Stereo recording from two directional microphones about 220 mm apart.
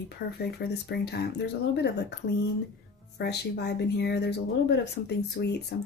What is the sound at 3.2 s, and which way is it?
Speech, 50° left (ahead or behind).